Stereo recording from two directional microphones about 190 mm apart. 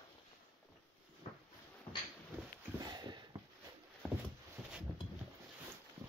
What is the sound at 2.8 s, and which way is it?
Sniff, 20° right (ahead or behind).